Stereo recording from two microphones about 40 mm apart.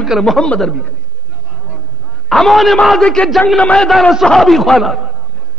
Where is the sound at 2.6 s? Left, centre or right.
Centre.